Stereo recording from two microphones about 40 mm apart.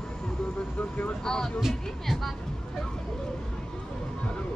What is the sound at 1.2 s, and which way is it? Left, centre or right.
Speech, centre.